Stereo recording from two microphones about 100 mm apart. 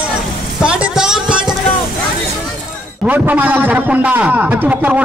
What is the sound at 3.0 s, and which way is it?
A man's voice, 15° right (ahead or behind).